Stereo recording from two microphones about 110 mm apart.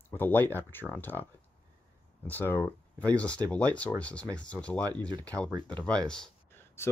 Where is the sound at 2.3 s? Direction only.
20° left (ahead or behind).